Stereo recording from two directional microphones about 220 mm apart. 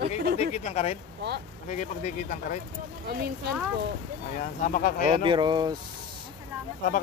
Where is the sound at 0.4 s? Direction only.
30° left (ahead or behind).